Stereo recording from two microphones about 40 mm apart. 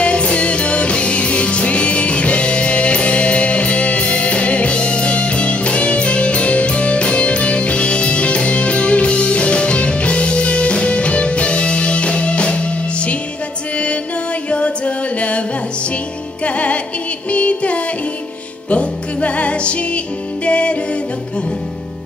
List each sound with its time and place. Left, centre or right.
0.0 s music: left
14.5 s music: left
16.4 s music: left